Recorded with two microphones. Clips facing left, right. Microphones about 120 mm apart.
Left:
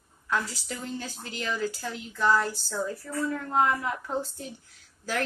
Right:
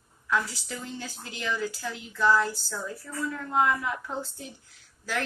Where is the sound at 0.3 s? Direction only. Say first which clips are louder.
Right 1 dB; 35° left (ahead or behind).